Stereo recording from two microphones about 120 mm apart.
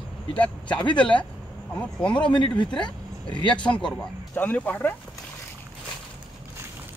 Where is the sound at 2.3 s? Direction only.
40° left (ahead or behind).